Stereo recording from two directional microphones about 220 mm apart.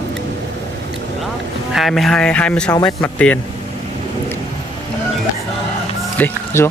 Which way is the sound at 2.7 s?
20° left (ahead or behind).